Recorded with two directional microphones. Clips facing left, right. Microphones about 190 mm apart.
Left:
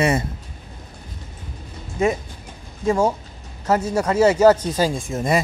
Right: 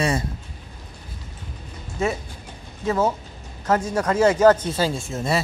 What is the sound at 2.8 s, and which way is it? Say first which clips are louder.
Speech: left 3 dB; 10° left (ahead or behind).